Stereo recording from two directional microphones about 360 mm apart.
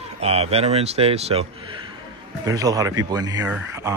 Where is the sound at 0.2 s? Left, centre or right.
Centre.